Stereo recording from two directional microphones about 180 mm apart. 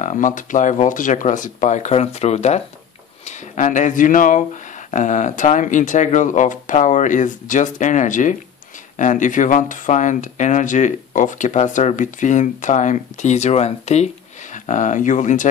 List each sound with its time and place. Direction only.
0.0 s speech: 45° left (ahead or behind)